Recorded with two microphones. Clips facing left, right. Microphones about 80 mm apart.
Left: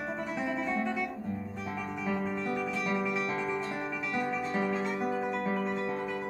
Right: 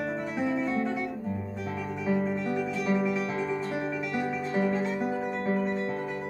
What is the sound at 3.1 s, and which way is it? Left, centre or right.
Music, centre.